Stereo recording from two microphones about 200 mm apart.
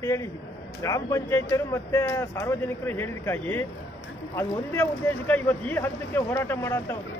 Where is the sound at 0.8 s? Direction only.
15° left (ahead or behind).